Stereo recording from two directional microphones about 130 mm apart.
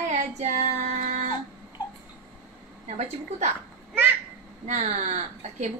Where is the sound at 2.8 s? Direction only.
60° right (ahead or behind).